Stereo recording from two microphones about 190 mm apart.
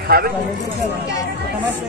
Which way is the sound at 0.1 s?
55° right (ahead or behind).